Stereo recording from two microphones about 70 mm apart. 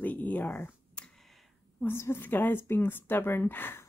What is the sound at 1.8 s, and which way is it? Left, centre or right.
Speech, left.